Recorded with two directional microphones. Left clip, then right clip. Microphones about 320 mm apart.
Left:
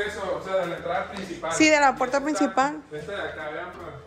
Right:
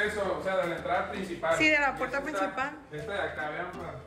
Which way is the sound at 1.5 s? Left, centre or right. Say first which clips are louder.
Left 6 dB; left.